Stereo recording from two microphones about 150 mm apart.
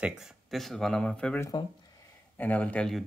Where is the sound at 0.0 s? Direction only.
5° right (ahead or behind).